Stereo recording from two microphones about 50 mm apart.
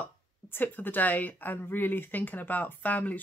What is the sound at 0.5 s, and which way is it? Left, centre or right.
Speech, left.